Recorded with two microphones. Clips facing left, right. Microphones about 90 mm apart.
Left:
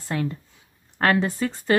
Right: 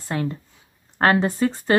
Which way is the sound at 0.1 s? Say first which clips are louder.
Right 1 dB; 20° right (ahead or behind).